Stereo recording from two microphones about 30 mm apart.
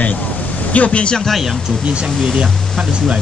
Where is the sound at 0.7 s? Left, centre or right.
Left.